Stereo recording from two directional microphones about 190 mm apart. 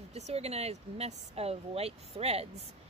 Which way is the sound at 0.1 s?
35° right (ahead or behind).